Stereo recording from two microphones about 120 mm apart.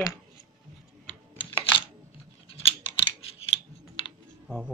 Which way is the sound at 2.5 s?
50° left (ahead or behind).